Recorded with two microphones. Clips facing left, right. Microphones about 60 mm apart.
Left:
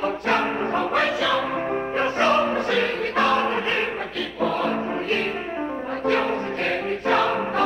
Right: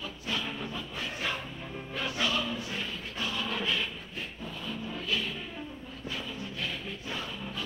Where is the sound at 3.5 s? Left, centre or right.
Left.